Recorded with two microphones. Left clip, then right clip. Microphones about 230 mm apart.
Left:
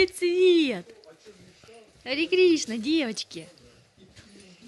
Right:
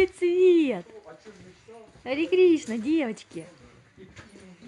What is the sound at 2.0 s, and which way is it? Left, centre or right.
Speech, centre.